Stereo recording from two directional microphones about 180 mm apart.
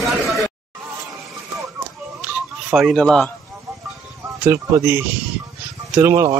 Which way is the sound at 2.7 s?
Centre (ahead or behind).